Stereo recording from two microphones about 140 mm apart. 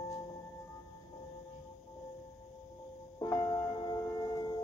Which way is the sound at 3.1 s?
25° left (ahead or behind).